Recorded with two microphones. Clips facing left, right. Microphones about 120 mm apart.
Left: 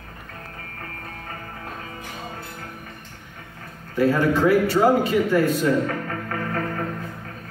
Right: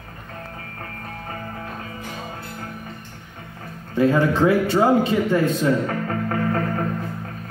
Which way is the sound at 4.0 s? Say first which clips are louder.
Right 1 dB; 25° right (ahead or behind).